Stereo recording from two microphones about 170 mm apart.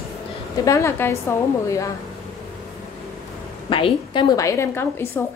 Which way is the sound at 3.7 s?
30° left (ahead or behind).